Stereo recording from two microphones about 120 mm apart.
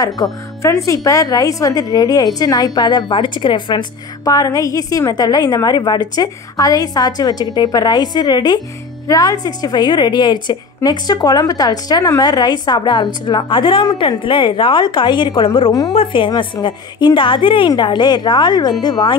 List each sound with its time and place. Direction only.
0.0 s a woman's voice: 25° left (ahead or behind)